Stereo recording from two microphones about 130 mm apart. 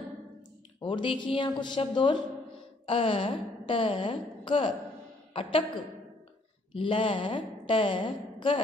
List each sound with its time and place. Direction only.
0.7 s a woman's voice: 40° left (ahead or behind)